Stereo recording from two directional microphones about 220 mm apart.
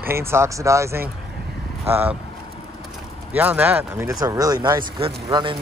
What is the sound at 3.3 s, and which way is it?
Speech, 10° right (ahead or behind).